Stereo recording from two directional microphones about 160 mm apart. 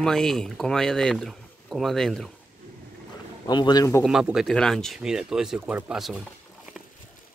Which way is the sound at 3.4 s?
25° left (ahead or behind).